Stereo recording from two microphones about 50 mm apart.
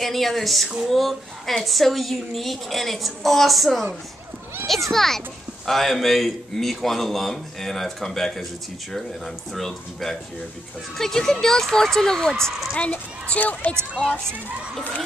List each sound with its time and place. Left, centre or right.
0.0 s a woman's voice: centre
4.9 s a woman's voice: centre
12.7 s a child's voice: left